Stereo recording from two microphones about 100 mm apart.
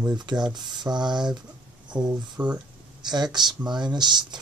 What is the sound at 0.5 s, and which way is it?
Speech, 45° right (ahead or behind).